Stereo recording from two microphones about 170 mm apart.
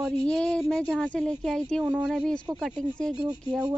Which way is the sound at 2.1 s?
5° left (ahead or behind).